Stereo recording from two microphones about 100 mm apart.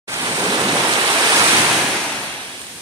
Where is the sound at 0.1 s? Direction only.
35° right (ahead or behind).